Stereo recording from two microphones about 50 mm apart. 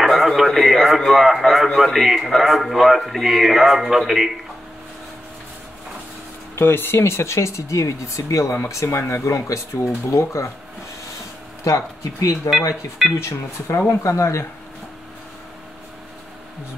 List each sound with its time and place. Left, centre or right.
0.0 s radio: centre
0.5 s speech: centre
6.5 s speech: left
11.6 s speech: left
12.4 s speech: centre
13.8 s speech: left